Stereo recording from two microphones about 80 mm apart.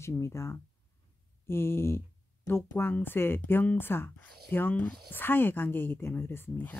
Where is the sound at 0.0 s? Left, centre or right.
Left.